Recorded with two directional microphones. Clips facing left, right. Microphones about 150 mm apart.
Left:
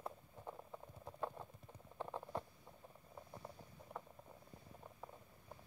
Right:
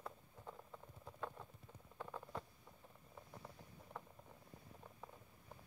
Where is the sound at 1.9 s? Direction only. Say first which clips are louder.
Left 4 dB; 25° left (ahead or behind).